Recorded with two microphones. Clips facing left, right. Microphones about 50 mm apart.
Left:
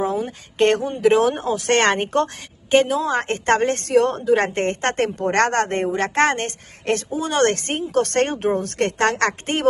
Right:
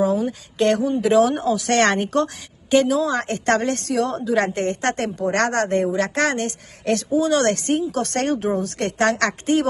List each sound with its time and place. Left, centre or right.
0.0 s a woman's voice: left